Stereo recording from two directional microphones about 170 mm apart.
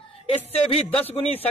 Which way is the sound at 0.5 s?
35° left (ahead or behind).